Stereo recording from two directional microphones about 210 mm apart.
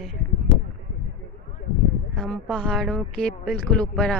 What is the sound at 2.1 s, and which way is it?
A woman's voice, centre (ahead or behind).